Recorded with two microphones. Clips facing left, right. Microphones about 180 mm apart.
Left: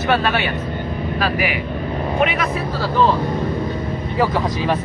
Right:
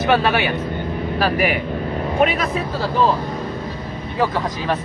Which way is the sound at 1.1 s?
45° right (ahead or behind).